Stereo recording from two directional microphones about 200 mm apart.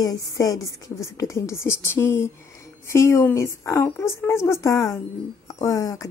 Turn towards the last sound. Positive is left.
turn(degrees=15)  # may be behind; listen again after turning